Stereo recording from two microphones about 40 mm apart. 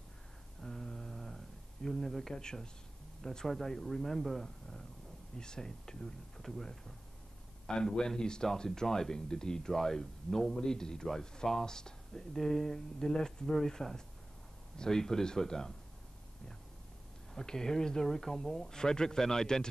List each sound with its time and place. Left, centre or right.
0.6 s a sound: centre
2.3 s speech: centre
7.6 s speech: centre
17.3 s speech: centre